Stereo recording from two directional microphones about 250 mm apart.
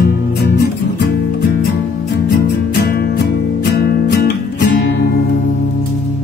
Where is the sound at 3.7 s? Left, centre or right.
Left.